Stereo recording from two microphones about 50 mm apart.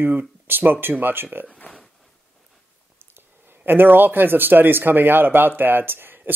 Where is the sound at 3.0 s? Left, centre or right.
Right.